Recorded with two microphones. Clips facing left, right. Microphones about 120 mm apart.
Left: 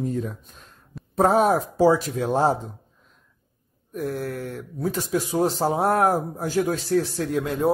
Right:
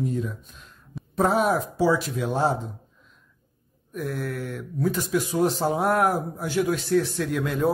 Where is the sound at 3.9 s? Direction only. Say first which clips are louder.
Left 2 dB; 35° left (ahead or behind).